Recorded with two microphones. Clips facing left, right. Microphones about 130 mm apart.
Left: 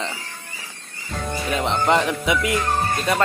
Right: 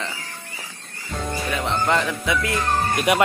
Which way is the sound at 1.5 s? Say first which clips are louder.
Left 3 dB; 20° left (ahead or behind).